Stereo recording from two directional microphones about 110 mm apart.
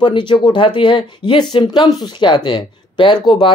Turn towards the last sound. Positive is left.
turn(degrees=45)  # may be behind; listen again after turning